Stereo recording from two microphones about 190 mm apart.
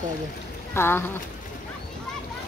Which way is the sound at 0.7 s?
10° left (ahead or behind).